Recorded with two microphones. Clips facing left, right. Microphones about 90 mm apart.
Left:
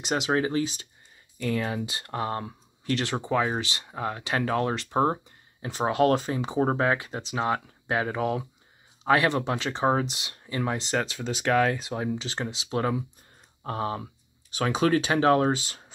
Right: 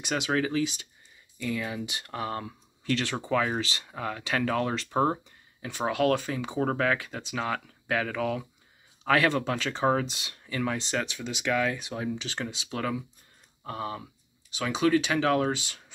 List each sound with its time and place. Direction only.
0.0 s speech: 30° left (ahead or behind)
13.7 s speech: 45° left (ahead or behind)